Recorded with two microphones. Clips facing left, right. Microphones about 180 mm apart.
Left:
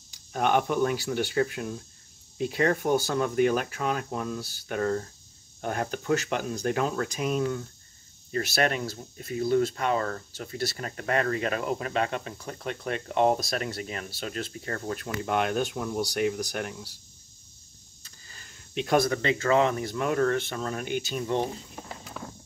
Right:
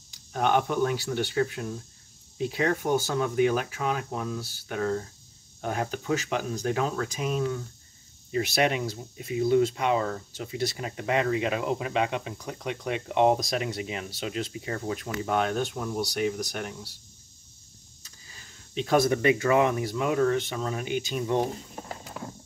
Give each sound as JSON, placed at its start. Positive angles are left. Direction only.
{"t": 0.3, "sound": "speech", "side_deg": 5}
{"t": 8.3, "sound": "speech", "side_deg": -15}
{"t": 14.2, "sound": "speech", "side_deg": -5}
{"t": 15.2, "sound": "speech", "side_deg": 5}
{"t": 18.8, "sound": "speech", "side_deg": 0}
{"t": 19.0, "sound": "speech", "side_deg": -15}